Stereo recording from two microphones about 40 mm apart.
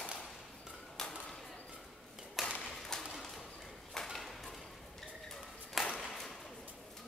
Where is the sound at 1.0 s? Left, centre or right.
Centre.